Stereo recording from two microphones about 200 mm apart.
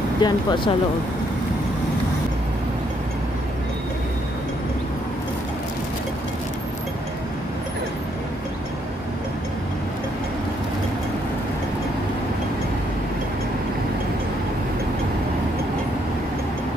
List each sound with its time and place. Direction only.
0.2 s speech: 25° left (ahead or behind)